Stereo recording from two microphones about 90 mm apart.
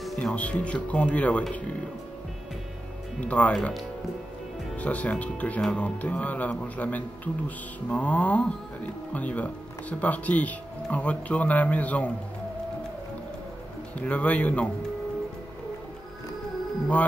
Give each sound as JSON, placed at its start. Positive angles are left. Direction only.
{"t": 0.0, "sound": "speech", "side_deg": 5}
{"t": 3.2, "sound": "speech", "side_deg": 15}
{"t": 4.7, "sound": "speech", "side_deg": 15}
{"t": 13.9, "sound": "speech", "side_deg": 15}